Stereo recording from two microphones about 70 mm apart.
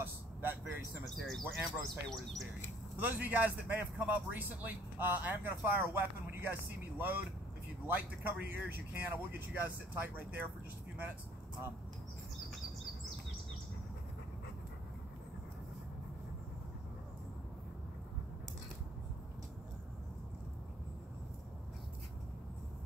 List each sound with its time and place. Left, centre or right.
0.0 s vehicle: right
1.0 s speech: centre
3.0 s speech: right